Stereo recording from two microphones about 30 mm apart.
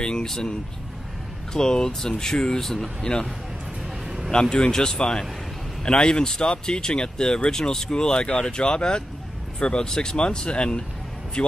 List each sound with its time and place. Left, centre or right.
0.0 s a sound: left
1.5 s speech: left
2.6 s speech: centre
4.3 s a man's voice: left